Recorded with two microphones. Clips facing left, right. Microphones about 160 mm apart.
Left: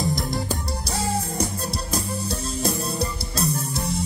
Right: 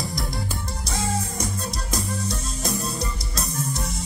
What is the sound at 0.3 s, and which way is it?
Music, 40° left (ahead or behind).